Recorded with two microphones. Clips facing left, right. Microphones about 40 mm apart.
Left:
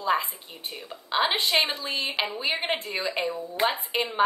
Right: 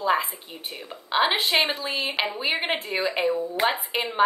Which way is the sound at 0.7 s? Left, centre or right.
Centre.